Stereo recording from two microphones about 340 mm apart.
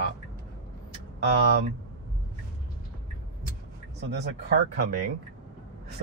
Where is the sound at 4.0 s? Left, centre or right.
Right.